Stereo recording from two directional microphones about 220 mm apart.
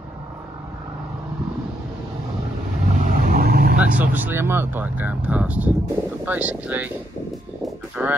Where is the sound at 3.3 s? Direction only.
45° right (ahead or behind).